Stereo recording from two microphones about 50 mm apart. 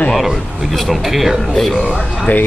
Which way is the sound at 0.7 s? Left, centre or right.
Centre.